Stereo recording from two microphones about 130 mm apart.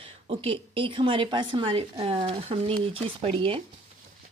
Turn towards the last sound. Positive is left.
turn(degrees=-45)  # may be behind; listen again after turning